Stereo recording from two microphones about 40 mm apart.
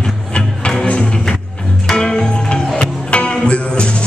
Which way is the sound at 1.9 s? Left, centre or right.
Centre.